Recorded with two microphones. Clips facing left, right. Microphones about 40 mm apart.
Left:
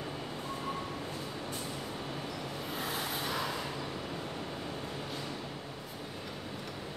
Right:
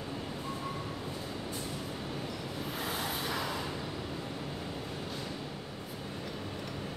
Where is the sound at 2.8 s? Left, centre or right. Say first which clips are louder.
Even; centre.